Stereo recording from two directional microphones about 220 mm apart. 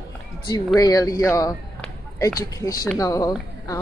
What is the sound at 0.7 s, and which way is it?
A man's voice, 15° left (ahead or behind).